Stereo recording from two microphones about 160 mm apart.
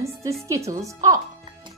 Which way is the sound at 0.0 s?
20° right (ahead or behind).